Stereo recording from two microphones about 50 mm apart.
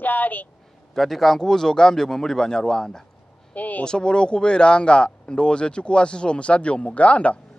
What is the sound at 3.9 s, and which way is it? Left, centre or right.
Speech, centre.